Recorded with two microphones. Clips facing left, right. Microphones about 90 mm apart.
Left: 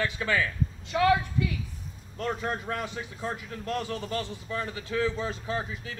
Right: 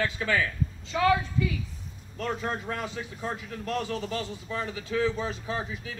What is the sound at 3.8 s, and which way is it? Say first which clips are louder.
A man's voice: right 1 dB; 20° right (ahead or behind).